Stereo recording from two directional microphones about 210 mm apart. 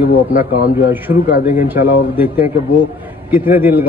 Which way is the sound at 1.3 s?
45° left (ahead or behind).